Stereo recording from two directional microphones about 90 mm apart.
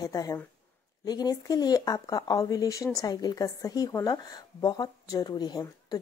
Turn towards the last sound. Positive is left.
turn(degrees=45)  # may be behind; listen again after turning